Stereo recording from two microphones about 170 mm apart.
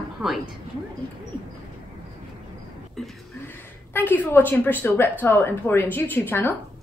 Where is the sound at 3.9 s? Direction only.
10° left (ahead or behind).